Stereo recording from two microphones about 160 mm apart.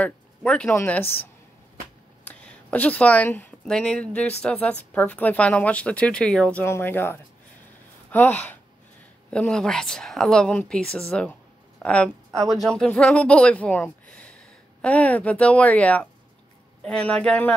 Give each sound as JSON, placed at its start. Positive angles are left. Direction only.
{"t": 0.0, "sound": "a woman's voice", "side_deg": 5}